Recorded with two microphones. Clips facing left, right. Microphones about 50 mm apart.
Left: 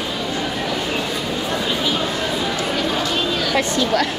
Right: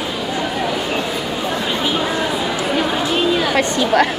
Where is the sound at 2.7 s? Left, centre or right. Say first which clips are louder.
Right 5 dB; centre.